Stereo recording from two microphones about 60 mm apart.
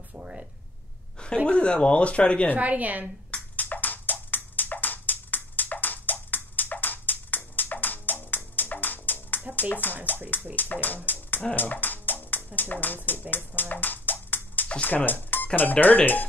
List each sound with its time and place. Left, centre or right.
0.1 s a sound: right
1.5 s speech: centre
2.5 s a woman's voice: right
3.3 s music: left
9.6 s speech: left
11.1 s dog: left
11.5 s music: left
12.5 s speech: left
13.6 s a sound: left
14.7 s speech: left